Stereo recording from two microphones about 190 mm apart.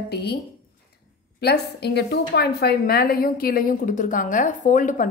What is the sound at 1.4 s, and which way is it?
A woman's voice, 60° left (ahead or behind).